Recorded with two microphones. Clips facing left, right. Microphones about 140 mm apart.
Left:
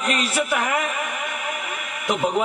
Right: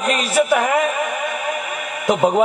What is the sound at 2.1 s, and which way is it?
Speech, 35° right (ahead or behind).